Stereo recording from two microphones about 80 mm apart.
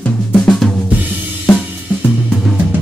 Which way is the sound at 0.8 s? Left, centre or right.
Right.